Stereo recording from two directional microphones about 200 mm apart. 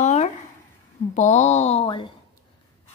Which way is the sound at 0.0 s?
35° left (ahead or behind).